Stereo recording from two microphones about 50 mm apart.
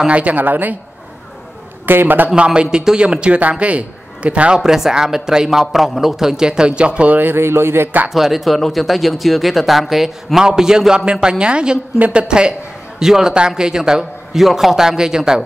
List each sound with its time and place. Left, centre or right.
0.0 s speech: right
1.9 s speech: right
2.3 s a man's voice: centre
4.6 s a man's voice: centre
7.1 s speech: right
7.3 s speech: right
8.1 s a man's voice: centre